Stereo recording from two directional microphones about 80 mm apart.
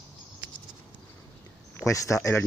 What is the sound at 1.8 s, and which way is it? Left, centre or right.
Speech, left.